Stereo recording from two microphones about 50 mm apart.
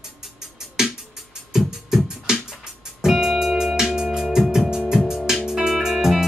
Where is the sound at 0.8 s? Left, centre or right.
Centre.